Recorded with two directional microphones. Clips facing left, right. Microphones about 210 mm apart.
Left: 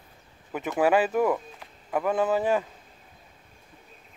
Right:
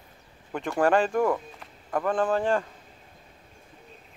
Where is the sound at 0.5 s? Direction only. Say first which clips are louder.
Even; 5° left (ahead or behind).